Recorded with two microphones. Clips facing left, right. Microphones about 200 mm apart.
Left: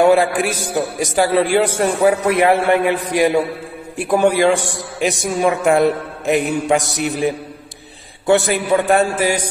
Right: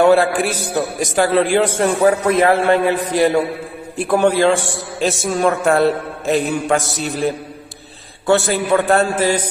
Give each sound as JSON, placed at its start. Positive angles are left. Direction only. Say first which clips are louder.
{"t": 0.0, "sound": "music", "louder": "even", "side_deg": 10}
{"t": 0.9, "sound": "a man's voice", "louder": "even", "side_deg": 10}